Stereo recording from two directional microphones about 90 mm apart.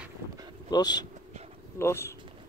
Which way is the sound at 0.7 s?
50° left (ahead or behind).